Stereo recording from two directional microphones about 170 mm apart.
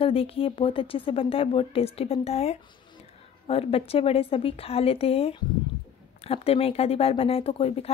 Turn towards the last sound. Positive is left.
turn(degrees=35)  # may be behind; listen again after turning